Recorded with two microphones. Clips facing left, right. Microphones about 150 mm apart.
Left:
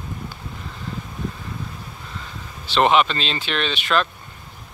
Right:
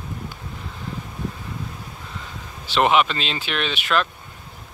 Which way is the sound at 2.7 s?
10° right (ahead or behind).